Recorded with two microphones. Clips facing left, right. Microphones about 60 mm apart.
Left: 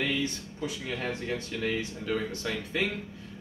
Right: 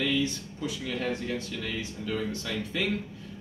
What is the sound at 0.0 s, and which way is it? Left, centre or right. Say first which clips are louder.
Speech: right 2 dB; left.